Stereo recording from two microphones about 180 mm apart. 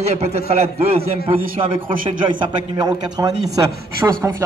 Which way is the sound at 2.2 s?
25° right (ahead or behind).